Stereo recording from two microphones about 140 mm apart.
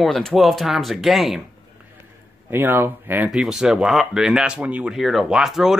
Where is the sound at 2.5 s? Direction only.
15° right (ahead or behind).